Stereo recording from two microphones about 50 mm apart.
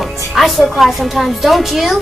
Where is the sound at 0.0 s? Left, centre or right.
Centre.